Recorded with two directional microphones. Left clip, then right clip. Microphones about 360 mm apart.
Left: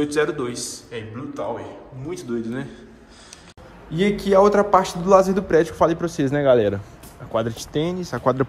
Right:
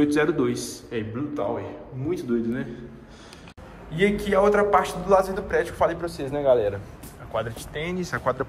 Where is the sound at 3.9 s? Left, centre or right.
Centre.